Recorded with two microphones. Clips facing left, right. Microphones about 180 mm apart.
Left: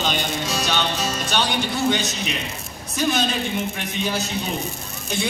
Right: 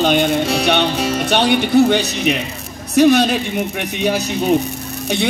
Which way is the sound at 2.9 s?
65° right (ahead or behind).